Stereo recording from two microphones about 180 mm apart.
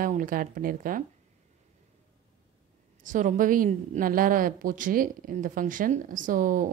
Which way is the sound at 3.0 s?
45° right (ahead or behind).